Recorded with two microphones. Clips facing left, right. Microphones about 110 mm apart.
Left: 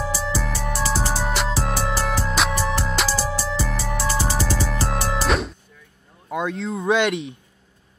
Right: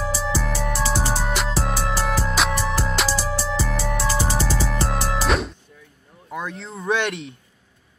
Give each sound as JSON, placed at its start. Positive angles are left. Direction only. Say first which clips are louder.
{"t": 0.0, "sound": "music", "louder": "right 1 dB", "side_deg": 0}
{"t": 6.3, "sound": "speech", "louder": "left 6 dB", "side_deg": 15}